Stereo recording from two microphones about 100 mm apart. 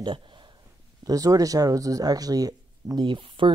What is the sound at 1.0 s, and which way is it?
Speech, 35° right (ahead or behind).